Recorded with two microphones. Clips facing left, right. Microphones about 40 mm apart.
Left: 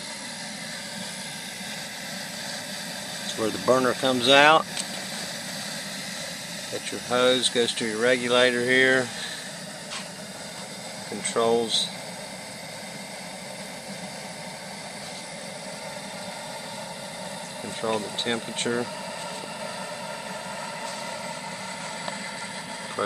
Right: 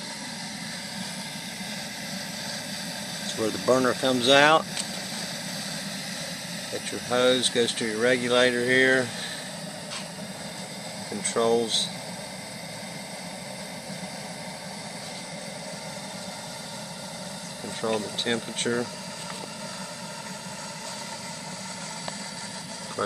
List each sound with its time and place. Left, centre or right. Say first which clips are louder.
3.3 s speech: left 1 dB; centre
6.7 s speech: left 1 dB; centre
11.2 s speech: left 1 dB; centre
17.8 s speech: even; centre
23.0 s speech: left 1 dB; left